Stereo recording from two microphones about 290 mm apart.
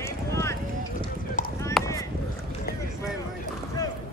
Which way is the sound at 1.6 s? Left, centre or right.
Centre.